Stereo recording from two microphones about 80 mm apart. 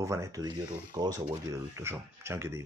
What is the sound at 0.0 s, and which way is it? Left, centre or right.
Speech, right.